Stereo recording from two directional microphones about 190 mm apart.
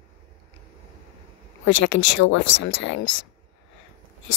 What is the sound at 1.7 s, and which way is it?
A woman's voice, 75° left (ahead or behind).